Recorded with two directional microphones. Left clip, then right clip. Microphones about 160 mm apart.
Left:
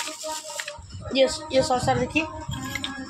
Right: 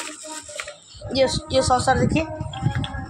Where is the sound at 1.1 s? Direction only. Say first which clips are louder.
Right 1 dB; 15° right (ahead or behind).